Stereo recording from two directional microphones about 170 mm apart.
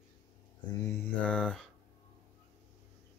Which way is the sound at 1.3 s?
5° left (ahead or behind).